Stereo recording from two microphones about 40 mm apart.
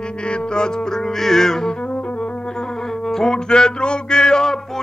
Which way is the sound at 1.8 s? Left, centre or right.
Left.